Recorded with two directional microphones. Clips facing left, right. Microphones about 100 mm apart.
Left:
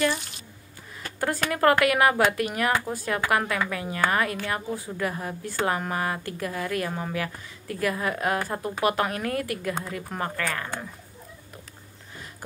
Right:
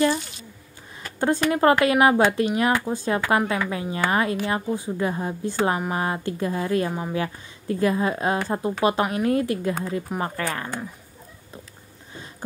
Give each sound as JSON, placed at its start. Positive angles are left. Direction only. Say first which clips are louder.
{"t": 1.2, "sound": "a woman's voice", "louder": "right 3 dB", "side_deg": -25}
{"t": 6.9, "sound": "speech", "louder": "right 3 dB", "side_deg": -15}
{"t": 7.2, "sound": "a woman's voice", "louder": "right 4 dB", "side_deg": -25}